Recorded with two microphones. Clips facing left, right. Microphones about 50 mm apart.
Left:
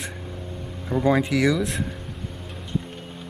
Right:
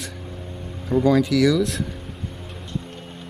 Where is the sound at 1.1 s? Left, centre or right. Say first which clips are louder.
Right 2 dB; left.